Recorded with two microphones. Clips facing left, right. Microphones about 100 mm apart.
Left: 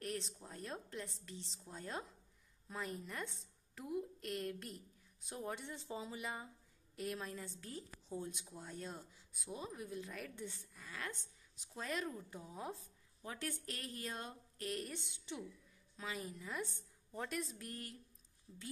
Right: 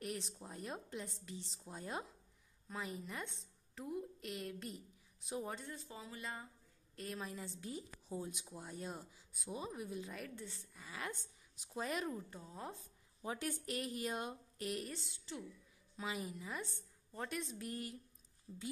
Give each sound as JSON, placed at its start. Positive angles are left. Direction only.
{"t": 0.0, "sound": "speech", "side_deg": -5}
{"t": 2.7, "sound": "a woman's voice", "side_deg": 0}
{"t": 5.7, "sound": "speech", "side_deg": 20}
{"t": 7.0, "sound": "speech", "side_deg": 5}
{"t": 7.2, "sound": "speech", "side_deg": -10}
{"t": 12.3, "sound": "a woman's voice", "side_deg": 10}
{"t": 13.2, "sound": "speech", "side_deg": -15}
{"t": 15.0, "sound": "speech", "side_deg": 20}
{"t": 16.0, "sound": "a woman's voice", "side_deg": -10}